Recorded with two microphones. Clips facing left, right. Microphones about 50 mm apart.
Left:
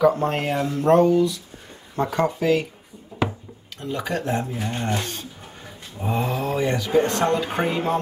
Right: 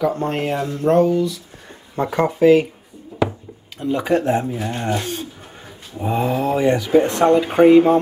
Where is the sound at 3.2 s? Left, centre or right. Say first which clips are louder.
Right 4 dB; centre; by 4.4 s right.